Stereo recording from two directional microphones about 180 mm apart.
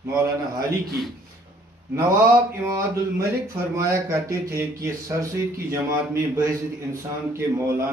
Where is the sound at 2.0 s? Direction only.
15° right (ahead or behind).